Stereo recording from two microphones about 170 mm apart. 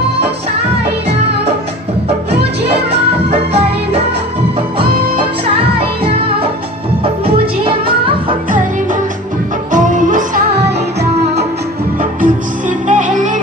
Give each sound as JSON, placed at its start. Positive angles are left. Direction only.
{"t": 3.3, "sound": "music", "side_deg": -35}
{"t": 5.8, "sound": "music", "side_deg": -35}
{"t": 9.7, "sound": "music", "side_deg": -50}
{"t": 12.0, "sound": "music", "side_deg": -50}